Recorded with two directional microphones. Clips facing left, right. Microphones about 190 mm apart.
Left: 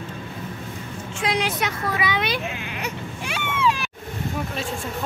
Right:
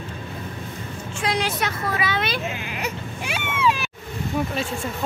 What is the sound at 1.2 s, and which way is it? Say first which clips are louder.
Speech: even; 20° left (ahead or behind).